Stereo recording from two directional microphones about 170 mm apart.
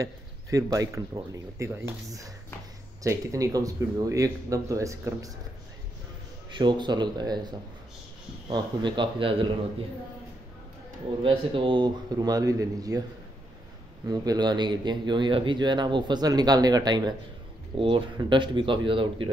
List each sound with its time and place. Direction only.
0.0 s speech: 20° right (ahead or behind)
6.5 s speech: 25° right (ahead or behind)
11.2 s speech: 30° right (ahead or behind)
14.0 s speech: 20° right (ahead or behind)